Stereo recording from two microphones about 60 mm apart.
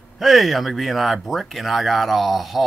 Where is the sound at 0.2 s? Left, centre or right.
Centre.